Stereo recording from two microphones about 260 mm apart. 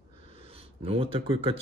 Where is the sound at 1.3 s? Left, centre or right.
Right.